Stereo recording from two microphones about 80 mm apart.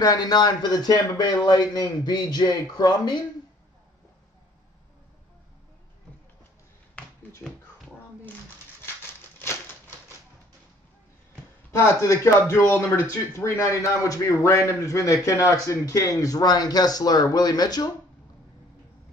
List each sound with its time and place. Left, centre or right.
0.0 s speech: left
8.8 s a sound: left
11.7 s a man's voice: left